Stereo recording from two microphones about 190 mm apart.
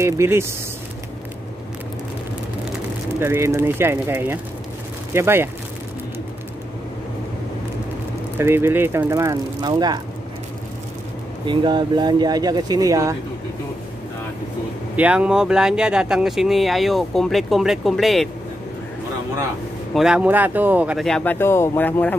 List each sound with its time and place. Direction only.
0.0 s speech: 15° right (ahead or behind)
3.2 s speech: 15° right (ahead or behind)
8.4 s speech: 10° right (ahead or behind)
11.4 s speech: 25° right (ahead or behind)
15.0 s speech: 5° right (ahead or behind)
19.9 s speech: 5° right (ahead or behind)